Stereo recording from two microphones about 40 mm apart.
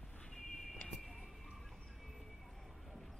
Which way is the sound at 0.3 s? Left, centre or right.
Centre.